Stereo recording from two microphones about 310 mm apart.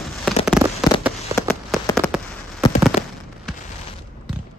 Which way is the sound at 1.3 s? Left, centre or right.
Centre.